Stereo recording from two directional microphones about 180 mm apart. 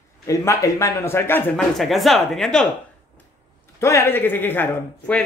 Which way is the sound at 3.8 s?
15° left (ahead or behind).